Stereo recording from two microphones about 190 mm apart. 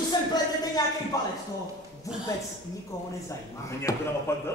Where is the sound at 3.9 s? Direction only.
20° left (ahead or behind).